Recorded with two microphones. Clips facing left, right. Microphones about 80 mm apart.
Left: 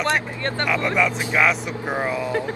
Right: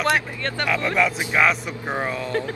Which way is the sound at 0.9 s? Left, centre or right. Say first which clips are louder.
Right 1 dB; centre.